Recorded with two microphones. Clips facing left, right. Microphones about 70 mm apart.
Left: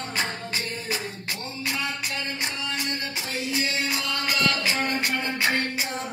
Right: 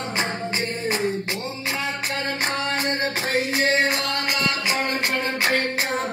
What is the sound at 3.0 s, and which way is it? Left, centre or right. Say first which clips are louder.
Music: right 8 dB; right.